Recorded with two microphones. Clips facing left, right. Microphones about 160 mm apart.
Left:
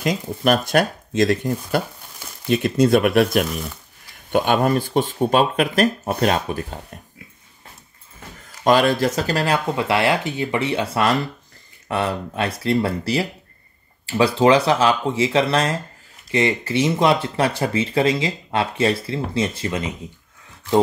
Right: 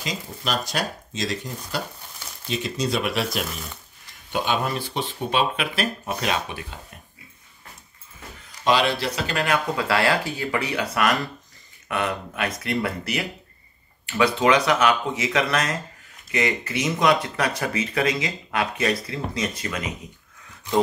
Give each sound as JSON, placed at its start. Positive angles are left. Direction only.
{"t": 0.0, "sound": "speech", "side_deg": 55}
{"t": 8.6, "sound": "speech", "side_deg": 45}
{"t": 9.8, "sound": "speech", "side_deg": 20}